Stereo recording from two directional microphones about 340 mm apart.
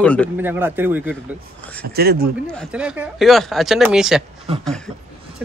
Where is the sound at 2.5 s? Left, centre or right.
Centre.